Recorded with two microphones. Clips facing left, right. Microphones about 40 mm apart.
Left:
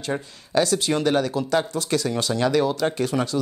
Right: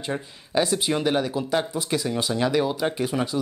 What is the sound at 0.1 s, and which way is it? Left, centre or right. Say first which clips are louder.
Speech: left 2 dB; centre.